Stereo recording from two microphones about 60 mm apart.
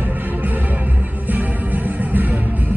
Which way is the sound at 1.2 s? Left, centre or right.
Right.